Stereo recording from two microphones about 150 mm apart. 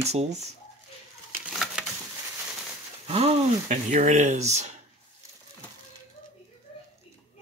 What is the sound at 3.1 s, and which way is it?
Speech, 45° right (ahead or behind).